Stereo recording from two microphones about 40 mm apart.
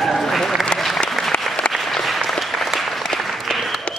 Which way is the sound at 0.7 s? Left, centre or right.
Left.